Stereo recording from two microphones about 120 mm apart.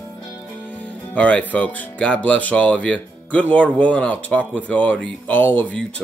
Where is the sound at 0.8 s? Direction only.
10° left (ahead or behind).